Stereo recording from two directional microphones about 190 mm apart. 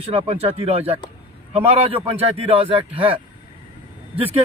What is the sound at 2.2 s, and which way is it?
A man's voice, 30° right (ahead or behind).